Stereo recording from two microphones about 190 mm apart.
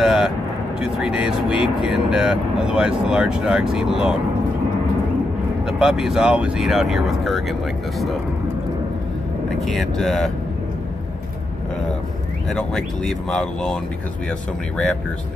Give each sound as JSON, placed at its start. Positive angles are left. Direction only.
{"t": 0.0, "sound": "vehicle", "side_deg": -5}
{"t": 0.9, "sound": "speech", "side_deg": -5}
{"t": 5.7, "sound": "speech", "side_deg": -5}
{"t": 9.7, "sound": "speech", "side_deg": 0}
{"t": 12.4, "sound": "speech", "side_deg": 5}